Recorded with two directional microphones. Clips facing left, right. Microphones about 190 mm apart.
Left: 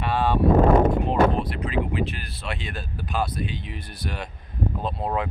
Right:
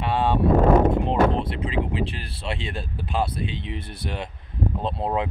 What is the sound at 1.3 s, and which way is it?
Speech, 25° right (ahead or behind).